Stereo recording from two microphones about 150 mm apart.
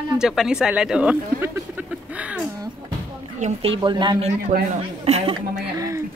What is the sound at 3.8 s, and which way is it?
Speech, 30° right (ahead or behind).